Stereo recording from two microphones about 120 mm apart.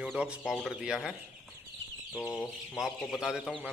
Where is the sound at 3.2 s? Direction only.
5° right (ahead or behind).